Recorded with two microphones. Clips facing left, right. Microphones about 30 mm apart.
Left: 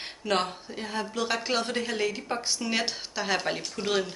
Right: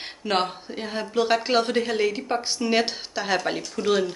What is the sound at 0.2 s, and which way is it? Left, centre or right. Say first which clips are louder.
Speech: right 3 dB; centre.